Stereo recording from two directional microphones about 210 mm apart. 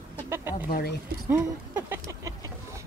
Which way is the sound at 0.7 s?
50° left (ahead or behind).